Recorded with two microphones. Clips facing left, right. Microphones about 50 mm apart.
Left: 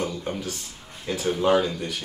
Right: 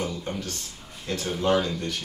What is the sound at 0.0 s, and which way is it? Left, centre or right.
Speech, centre.